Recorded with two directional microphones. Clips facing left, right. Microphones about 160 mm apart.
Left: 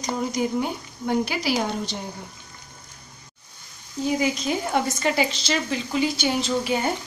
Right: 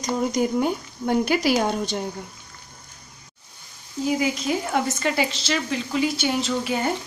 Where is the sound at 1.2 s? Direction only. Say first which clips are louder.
Right 4 dB; 50° right (ahead or behind).